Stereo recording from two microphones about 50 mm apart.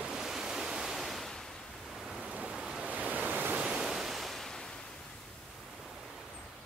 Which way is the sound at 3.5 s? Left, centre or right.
Centre.